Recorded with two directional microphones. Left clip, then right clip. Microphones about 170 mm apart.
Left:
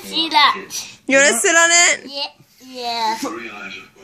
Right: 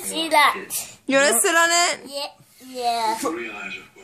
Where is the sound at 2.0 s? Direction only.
55° right (ahead or behind).